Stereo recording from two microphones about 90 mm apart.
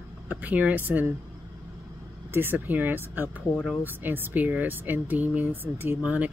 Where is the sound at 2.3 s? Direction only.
20° right (ahead or behind).